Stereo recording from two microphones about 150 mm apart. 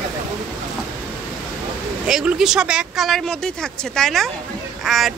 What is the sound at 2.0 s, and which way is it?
Speech, 5° right (ahead or behind).